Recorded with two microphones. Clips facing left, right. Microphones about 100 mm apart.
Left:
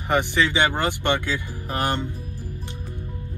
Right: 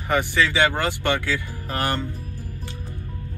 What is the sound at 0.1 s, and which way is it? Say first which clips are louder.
Speech: even; 20° left (ahead or behind).